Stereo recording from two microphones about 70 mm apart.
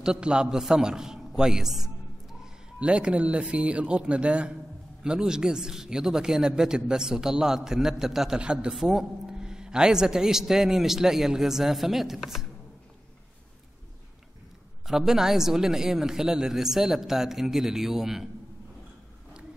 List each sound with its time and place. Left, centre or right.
0.0 s a man's voice: centre
14.9 s a man's voice: centre